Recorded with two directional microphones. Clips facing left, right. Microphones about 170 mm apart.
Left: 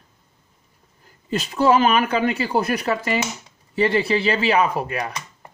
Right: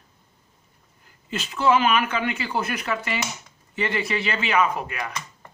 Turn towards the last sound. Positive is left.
turn(degrees=35)  # may be behind; listen again after turning